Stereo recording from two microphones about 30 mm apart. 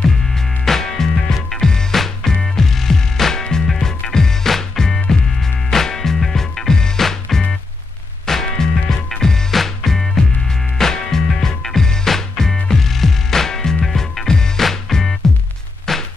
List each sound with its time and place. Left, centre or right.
0.3 s music: centre
7.0 s music: centre
8.5 s music: centre
9.5 s music: centre
13.8 s music: centre
14.2 s music: left
14.6 s music: centre
15.9 s a sound: centre